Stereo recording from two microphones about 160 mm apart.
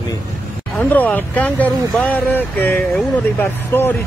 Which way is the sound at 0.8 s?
10° left (ahead or behind).